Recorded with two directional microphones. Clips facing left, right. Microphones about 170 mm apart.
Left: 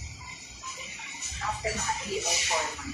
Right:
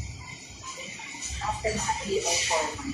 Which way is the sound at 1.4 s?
30° right (ahead or behind).